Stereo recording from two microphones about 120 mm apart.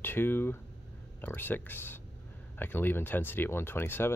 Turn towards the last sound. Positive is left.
turn(degrees=20)  # may be behind; listen again after turning